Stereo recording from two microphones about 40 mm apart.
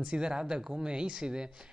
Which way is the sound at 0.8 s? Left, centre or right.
Right.